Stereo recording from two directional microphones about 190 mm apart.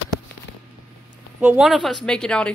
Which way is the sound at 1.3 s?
5° right (ahead or behind).